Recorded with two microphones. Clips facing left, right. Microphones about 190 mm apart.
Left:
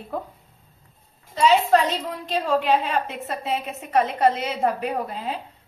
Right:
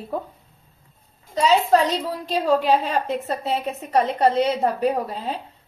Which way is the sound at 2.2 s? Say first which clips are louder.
Right 2 dB; 40° right (ahead or behind).